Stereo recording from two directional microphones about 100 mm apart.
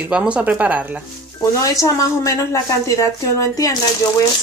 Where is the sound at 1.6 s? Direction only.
35° left (ahead or behind).